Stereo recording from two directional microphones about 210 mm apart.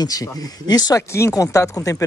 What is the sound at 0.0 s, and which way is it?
Speech, 15° left (ahead or behind).